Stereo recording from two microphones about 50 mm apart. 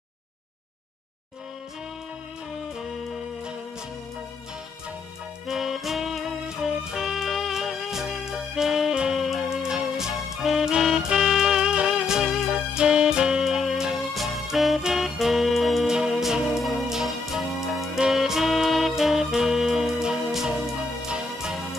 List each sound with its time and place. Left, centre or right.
5.5 s music: centre
9.2 s music: centre
14.8 s music: centre